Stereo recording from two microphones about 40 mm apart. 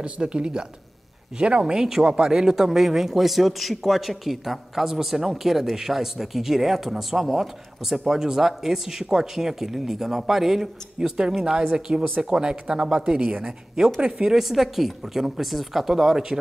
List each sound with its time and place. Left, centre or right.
0.0 s speech: right; by 10.7 s centre
11.0 s speech: centre
13.4 s speech: centre
14.3 s speech: centre